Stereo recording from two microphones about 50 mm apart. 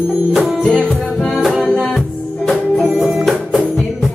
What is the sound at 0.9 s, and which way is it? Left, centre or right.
Music, centre.